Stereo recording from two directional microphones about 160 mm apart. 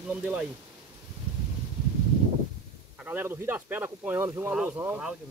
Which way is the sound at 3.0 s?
10° right (ahead or behind).